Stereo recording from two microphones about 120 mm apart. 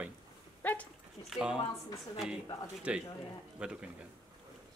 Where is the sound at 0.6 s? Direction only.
15° left (ahead or behind).